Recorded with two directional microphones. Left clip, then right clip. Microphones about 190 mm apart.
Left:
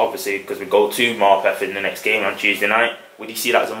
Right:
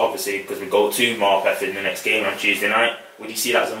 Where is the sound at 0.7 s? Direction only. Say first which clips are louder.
Left 2 dB; 10° left (ahead or behind).